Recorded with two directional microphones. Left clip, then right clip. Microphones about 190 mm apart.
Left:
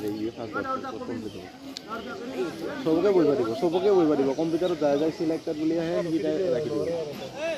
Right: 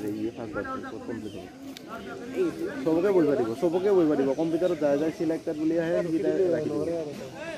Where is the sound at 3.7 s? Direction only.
10° left (ahead or behind).